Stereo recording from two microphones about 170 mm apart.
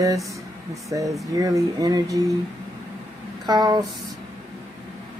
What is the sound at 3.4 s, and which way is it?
Speech, 25° right (ahead or behind).